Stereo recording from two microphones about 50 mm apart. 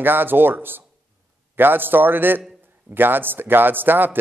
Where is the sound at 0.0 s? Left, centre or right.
Right.